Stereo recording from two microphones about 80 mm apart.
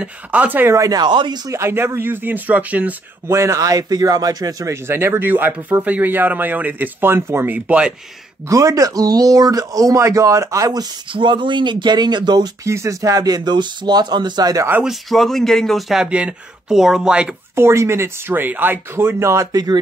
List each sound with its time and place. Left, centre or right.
0.0 s speech: centre
0.7 s speech: right
1.0 s speech: right
1.5 s speech: right
3.3 s speech: right
4.8 s speech: right
7.5 s speech: centre
8.5 s speech: right
11.1 s speech: right
12.6 s speech: right
14.9 s speech: centre
16.0 s speech: centre
17.6 s speech: right